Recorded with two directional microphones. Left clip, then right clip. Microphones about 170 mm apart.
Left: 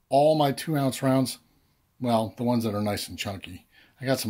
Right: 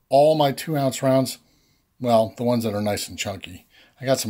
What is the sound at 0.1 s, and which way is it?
Speech, 10° right (ahead or behind).